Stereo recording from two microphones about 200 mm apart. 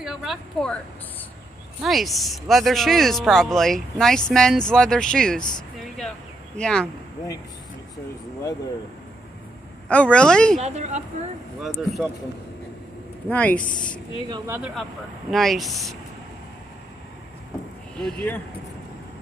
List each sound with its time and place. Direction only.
0.0 s speech: centre (ahead or behind)
1.8 s speech: centre (ahead or behind)
5.9 s a sound: 5° left (ahead or behind)
9.8 s speech: 5° left (ahead or behind)
10.6 s speech: 35° right (ahead or behind)
11.6 s speech: centre (ahead or behind)
13.3 s speech: 10° left (ahead or behind)
14.3 s speech: 15° right (ahead or behind)
14.6 s speech: centre (ahead or behind)
17.9 s speech: 5° left (ahead or behind)